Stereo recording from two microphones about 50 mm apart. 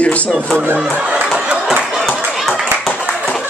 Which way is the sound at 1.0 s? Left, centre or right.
Right.